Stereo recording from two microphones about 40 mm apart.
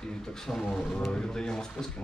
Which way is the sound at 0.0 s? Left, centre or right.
Centre.